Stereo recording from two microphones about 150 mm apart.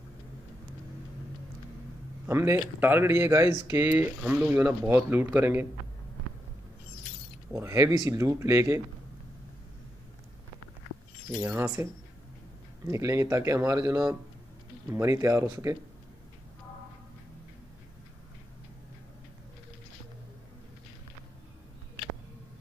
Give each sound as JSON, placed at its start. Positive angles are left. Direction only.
{"t": 2.2, "sound": "speech", "side_deg": -15}
{"t": 7.5, "sound": "speech", "side_deg": -20}
{"t": 11.3, "sound": "speech", "side_deg": -10}
{"t": 12.9, "sound": "speech", "side_deg": -20}